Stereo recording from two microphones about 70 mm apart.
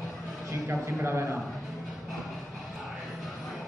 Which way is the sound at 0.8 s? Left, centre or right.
Right.